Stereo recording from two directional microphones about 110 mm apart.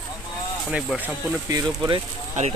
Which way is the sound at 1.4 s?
30° right (ahead or behind).